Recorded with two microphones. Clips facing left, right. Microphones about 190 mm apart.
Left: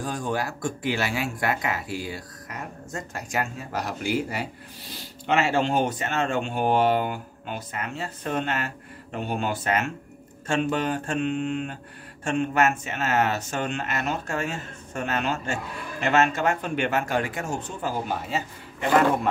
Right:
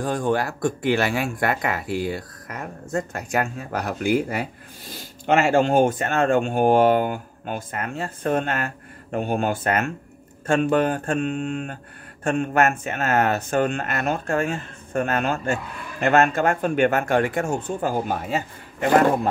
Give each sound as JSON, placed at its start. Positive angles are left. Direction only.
{"t": 0.0, "sound": "speech", "side_deg": -55}